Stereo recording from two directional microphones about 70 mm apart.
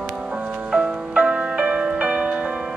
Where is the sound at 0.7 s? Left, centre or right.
Centre.